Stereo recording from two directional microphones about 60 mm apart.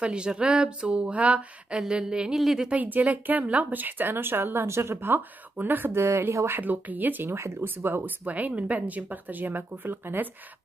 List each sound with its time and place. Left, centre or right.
0.0 s speech: centre
2.7 s a woman's voice: right
6.6 s speech: right
7.2 s speech: right
7.6 s a woman's voice: right